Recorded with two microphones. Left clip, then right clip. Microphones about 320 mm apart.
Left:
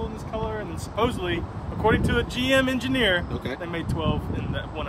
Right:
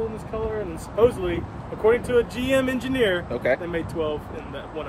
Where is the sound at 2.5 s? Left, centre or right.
Left.